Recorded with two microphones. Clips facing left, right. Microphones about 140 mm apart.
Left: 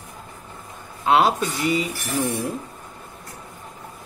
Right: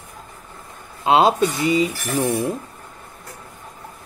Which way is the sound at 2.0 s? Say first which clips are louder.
Right 3 dB; 65° right (ahead or behind).